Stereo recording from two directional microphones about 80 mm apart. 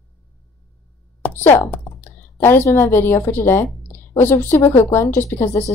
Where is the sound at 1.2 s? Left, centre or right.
Left.